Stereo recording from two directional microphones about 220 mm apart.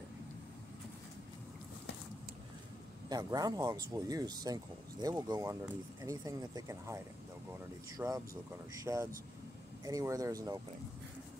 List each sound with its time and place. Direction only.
3.1 s speech: 15° right (ahead or behind)
8.0 s speech: 10° right (ahead or behind)